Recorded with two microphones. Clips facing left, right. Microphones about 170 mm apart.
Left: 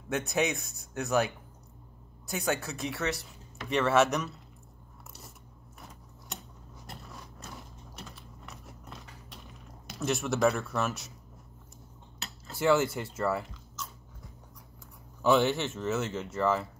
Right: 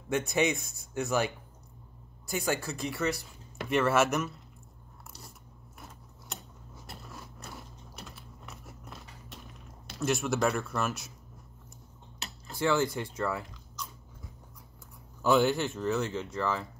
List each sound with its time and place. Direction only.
0.1 s speech: centre (ahead or behind)
9.8 s speech: centre (ahead or behind)
12.5 s speech: 5° left (ahead or behind)
15.2 s speech: centre (ahead or behind)